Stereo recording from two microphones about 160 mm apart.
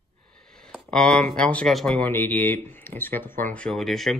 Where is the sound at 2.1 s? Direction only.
15° left (ahead or behind).